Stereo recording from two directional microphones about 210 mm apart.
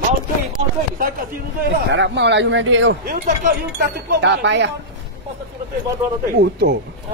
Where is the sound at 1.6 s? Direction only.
55° right (ahead or behind).